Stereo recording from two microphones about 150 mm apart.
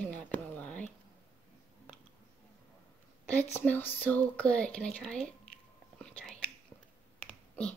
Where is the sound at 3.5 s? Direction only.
15° left (ahead or behind).